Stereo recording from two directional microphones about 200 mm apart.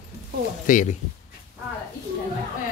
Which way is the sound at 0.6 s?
40° left (ahead or behind).